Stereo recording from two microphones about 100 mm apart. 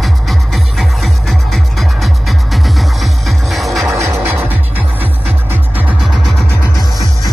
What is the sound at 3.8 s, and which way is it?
Music, 30° right (ahead or behind).